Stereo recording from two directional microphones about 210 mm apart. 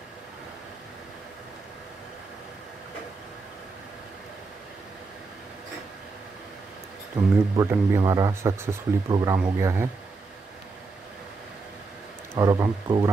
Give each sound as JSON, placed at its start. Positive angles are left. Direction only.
{"t": 7.5, "sound": "speech", "side_deg": -15}
{"t": 12.4, "sound": "speech", "side_deg": -15}